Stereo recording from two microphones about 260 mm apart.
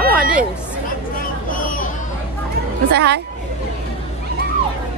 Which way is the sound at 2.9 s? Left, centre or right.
Right.